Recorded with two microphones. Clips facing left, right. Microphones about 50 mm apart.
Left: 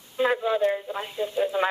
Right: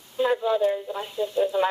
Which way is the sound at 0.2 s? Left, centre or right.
Centre.